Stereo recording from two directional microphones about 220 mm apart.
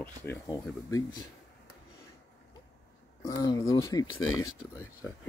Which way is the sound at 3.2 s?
15° left (ahead or behind).